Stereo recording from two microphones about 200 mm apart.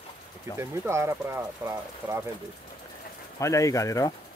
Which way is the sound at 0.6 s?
15° right (ahead or behind).